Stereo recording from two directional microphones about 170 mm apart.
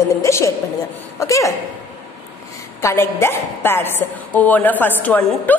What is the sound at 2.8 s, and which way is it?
A woman's voice, 15° left (ahead or behind).